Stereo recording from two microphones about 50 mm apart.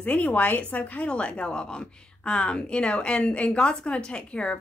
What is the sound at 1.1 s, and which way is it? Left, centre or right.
A woman's voice, left.